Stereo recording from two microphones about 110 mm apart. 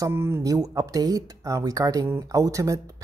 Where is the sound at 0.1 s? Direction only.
25° right (ahead or behind).